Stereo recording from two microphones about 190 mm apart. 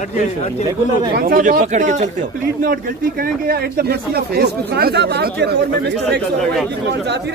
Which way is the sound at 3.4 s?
55° right (ahead or behind).